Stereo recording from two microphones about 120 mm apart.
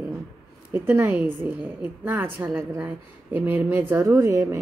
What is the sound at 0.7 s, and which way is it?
A woman's voice, 20° right (ahead or behind).